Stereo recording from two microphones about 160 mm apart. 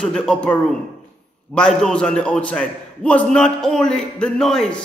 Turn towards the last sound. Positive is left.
turn(degrees=5)  # may be behind; listen again after turning